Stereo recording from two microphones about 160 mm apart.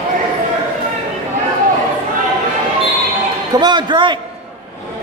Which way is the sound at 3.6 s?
30° right (ahead or behind).